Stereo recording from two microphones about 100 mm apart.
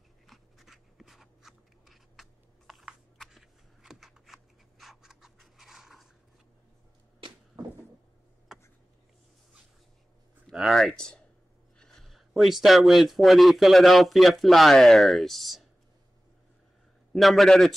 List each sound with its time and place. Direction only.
0.3 s writing: centre (ahead or behind)
7.5 s cupboard open or close: 45° right (ahead or behind)
10.5 s speech: centre (ahead or behind)
17.1 s speech: centre (ahead or behind)